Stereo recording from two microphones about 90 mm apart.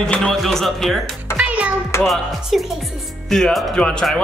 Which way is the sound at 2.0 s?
Centre (ahead or behind).